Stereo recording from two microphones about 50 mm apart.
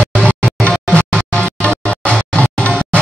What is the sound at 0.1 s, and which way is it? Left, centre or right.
Music, left.